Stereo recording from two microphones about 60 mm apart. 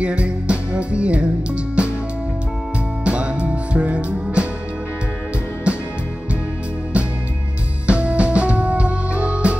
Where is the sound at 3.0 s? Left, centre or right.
Centre.